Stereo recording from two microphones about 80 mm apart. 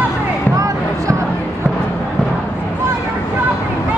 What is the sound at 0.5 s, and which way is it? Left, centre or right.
Basketball bounce, right.